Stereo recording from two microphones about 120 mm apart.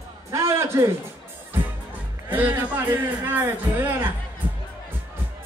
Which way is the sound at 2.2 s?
15° right (ahead or behind).